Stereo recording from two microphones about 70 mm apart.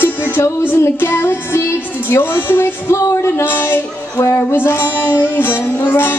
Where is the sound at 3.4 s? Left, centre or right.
Left.